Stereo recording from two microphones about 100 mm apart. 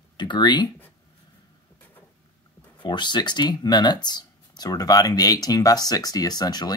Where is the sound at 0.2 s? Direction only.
50° left (ahead or behind).